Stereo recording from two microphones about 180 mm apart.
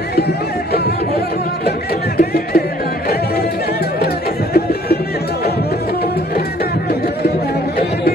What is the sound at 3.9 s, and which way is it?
Music, 60° left (ahead or behind).